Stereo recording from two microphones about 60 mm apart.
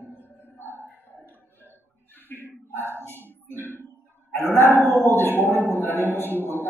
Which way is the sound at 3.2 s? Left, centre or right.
Right.